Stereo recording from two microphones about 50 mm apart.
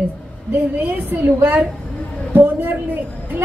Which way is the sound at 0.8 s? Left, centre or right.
Right.